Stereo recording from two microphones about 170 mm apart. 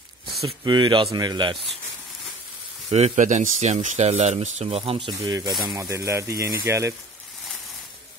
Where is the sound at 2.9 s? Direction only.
40° right (ahead or behind).